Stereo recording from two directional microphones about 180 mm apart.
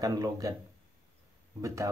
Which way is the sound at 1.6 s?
20° right (ahead or behind).